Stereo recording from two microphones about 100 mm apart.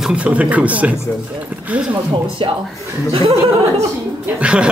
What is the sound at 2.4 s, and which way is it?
Speech, 65° right (ahead or behind).